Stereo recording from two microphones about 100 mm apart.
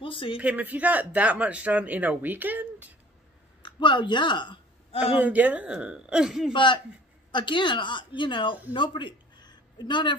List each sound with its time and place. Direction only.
0.0 s speech: 60° left (ahead or behind)
0.4 s speech: 15° right (ahead or behind)
3.6 s speech: 55° left (ahead or behind)
5.1 s speech: 15° right (ahead or behind)
6.5 s a man's voice: 55° left (ahead or behind)
8.7 s a sound: 55° left (ahead or behind)